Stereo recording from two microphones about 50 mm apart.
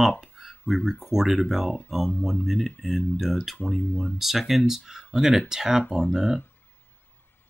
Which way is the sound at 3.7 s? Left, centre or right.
Left.